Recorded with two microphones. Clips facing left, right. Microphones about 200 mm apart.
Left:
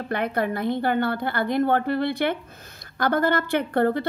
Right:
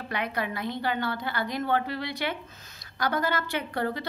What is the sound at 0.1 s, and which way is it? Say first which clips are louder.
A woman's voice: left 6 dB; 50° left (ahead or behind).